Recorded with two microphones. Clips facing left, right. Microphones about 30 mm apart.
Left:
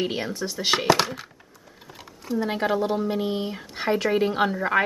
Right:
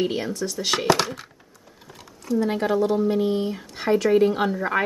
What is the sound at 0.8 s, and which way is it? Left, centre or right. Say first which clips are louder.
Speech: even; centre.